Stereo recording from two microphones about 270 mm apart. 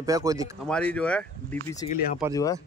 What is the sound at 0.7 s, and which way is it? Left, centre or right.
A man's voice, centre.